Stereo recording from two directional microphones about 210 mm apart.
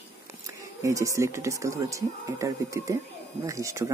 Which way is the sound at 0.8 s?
15° right (ahead or behind).